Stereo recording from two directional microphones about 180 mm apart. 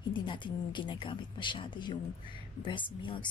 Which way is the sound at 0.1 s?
25° left (ahead or behind).